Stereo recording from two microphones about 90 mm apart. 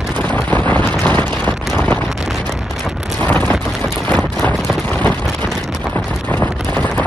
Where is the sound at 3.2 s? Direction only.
20° left (ahead or behind).